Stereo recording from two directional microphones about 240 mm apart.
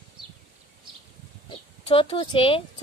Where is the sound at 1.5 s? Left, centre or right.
Left.